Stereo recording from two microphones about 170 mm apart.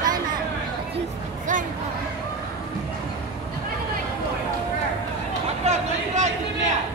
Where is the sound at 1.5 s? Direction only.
50° right (ahead or behind).